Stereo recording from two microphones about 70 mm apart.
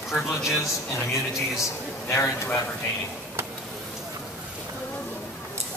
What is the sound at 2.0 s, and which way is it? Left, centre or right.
Speech, left.